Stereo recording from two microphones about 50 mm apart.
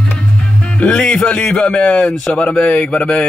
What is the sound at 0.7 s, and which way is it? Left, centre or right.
Speech, left.